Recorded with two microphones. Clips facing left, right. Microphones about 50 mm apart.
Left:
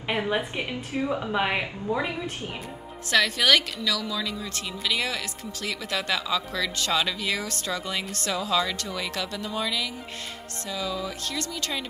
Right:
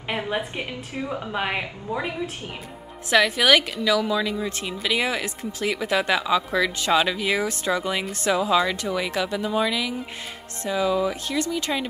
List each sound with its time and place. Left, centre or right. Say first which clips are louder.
0.1 s a woman's voice: even; centre
3.1 s a woman's voice: right 4 dB; centre